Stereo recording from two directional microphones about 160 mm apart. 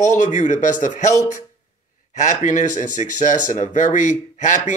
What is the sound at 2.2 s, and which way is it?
Speech, 50° left (ahead or behind).